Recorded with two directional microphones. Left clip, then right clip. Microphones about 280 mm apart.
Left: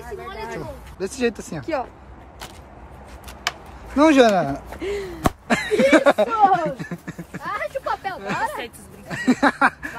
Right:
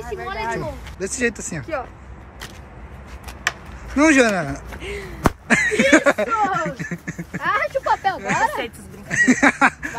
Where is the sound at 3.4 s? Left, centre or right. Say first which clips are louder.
Right 3 dB; centre.